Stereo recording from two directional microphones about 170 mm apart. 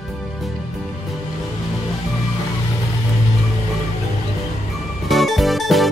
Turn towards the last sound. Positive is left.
turn(degrees=0)  # may be behind; listen again after turning